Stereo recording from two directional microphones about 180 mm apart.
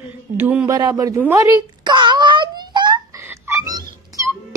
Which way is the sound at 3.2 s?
15° right (ahead or behind).